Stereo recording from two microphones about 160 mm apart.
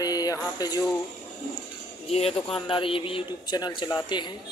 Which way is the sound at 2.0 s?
40° left (ahead or behind).